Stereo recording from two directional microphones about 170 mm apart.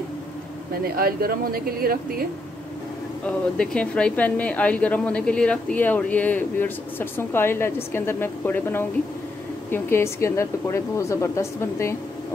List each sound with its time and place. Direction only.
0.8 s speech: 60° right (ahead or behind)
3.3 s speech: 5° left (ahead or behind)